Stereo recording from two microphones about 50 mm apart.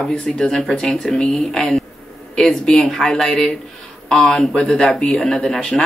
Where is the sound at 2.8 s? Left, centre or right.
Centre; by 5.2 s left.